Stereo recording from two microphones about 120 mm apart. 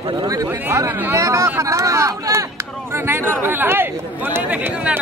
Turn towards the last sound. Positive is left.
turn(degrees=-15)  # may be behind; listen again after turning